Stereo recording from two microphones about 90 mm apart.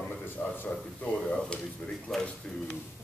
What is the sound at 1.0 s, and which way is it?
Speech, 10° left (ahead or behind).